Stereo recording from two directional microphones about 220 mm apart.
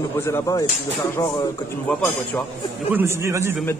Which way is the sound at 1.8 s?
5° left (ahead or behind).